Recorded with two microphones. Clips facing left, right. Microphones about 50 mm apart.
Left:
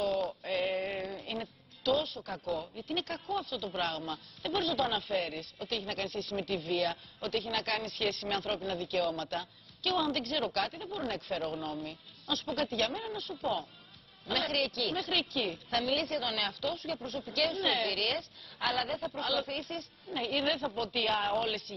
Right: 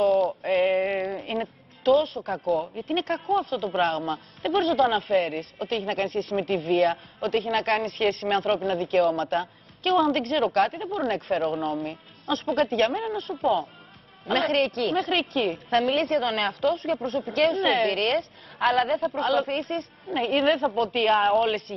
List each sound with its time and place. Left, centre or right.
0.4 s synthetic singing: right
2.0 s a woman's voice: right
2.3 s speech: right
2.8 s a woman's voice: right
10.7 s speech: right
11.0 s speech: right
11.9 s a woman's voice: right
18.9 s speech: right
19.4 s speech: right
21.2 s speech: right